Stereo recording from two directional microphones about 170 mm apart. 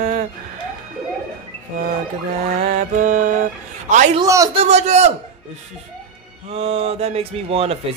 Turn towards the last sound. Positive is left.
turn(degrees=-35)  # may be behind; listen again after turning